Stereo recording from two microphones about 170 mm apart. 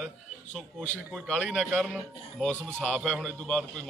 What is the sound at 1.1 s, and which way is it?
A man's voice, centre (ahead or behind).